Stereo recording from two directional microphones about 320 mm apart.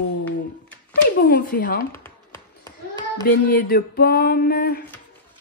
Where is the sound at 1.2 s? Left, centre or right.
Left.